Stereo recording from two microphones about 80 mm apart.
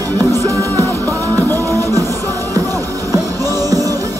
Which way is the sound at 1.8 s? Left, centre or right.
Right.